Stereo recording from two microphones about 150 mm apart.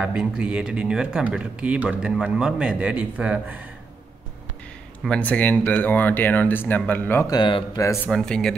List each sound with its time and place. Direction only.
0.0 s speech: 5° right (ahead or behind)
5.0 s speech: 5° left (ahead or behind)
7.2 s speech: 30° left (ahead or behind)
7.8 s speech: 15° left (ahead or behind)
8.1 s speech: 5° left (ahead or behind)